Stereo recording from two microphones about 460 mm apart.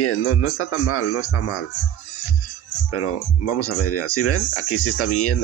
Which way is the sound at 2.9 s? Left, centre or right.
Left.